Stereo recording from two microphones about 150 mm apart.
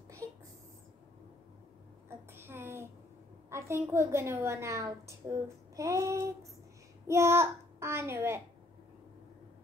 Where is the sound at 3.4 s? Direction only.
20° right (ahead or behind).